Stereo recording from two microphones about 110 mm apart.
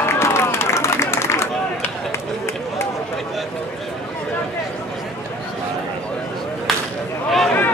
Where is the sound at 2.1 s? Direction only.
25° left (ahead or behind).